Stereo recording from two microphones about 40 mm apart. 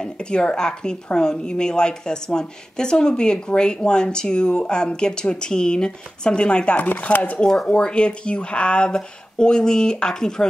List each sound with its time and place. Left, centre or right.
0.0 s a woman's voice: left
7.0 s speech: left
7.6 s a woman's voice: left